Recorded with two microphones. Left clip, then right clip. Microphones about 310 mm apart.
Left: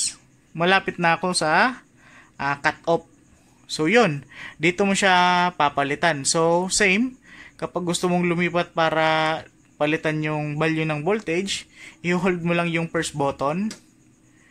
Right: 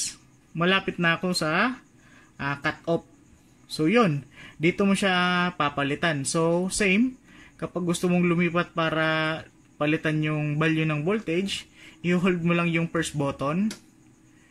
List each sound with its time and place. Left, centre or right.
0.6 s speech: centre